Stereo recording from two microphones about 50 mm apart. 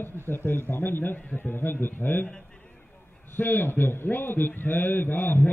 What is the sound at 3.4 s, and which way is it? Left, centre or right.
A man's voice, left.